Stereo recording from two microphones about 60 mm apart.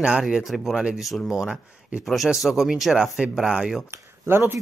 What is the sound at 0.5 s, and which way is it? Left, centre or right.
Speech, centre.